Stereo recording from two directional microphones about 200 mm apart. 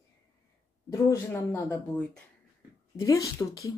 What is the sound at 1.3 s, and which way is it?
Speech, 10° left (ahead or behind).